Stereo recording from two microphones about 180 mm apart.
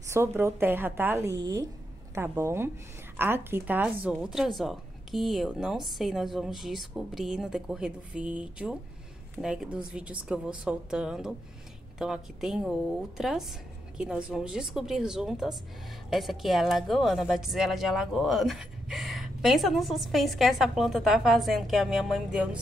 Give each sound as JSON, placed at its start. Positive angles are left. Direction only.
{"t": 0.1, "sound": "a woman's voice", "side_deg": -15}